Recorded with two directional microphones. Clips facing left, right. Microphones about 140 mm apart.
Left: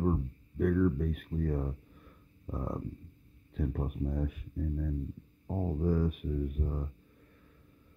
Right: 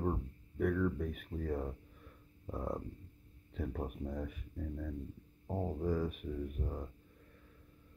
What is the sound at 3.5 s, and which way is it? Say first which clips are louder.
Speech: left 5 dB; centre (ahead or behind).